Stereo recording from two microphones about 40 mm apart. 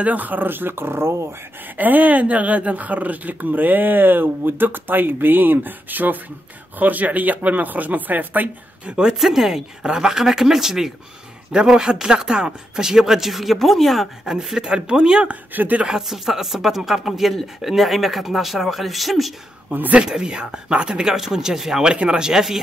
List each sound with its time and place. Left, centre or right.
0.0 s speech: right
1.8 s speech: right
8.8 s speech: right
9.2 s speech: centre
14.2 s speech: centre
15.2 s speech: right
15.9 s speech: centre
20.0 s speech: centre
21.8 s speech: right